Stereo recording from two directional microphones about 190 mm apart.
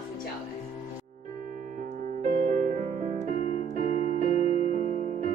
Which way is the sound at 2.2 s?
40° right (ahead or behind).